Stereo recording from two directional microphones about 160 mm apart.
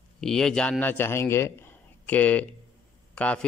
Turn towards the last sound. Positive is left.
turn(degrees=10)  # may be behind; listen again after turning